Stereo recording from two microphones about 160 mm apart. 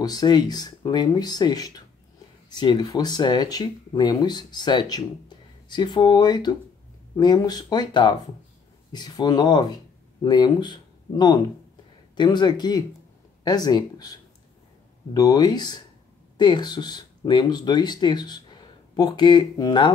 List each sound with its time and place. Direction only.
0.0 s speech: 25° left (ahead or behind)
15.1 s speech: 25° left (ahead or behind)